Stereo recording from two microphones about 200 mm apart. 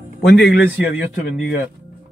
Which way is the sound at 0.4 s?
55° left (ahead or behind).